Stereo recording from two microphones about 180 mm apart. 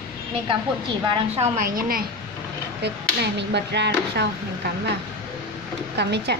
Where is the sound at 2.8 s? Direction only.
70° right (ahead or behind).